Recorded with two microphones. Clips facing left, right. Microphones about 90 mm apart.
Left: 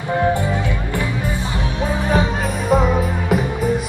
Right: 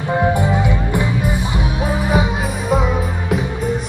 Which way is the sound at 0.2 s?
20° right (ahead or behind).